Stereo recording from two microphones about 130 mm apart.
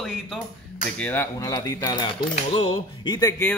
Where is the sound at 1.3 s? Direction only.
25° left (ahead or behind).